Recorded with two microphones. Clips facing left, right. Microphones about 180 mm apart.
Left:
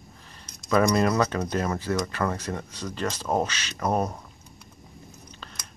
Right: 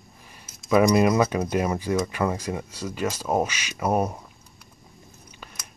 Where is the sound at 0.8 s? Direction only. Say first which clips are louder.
Right 3 dB; 10° right (ahead or behind).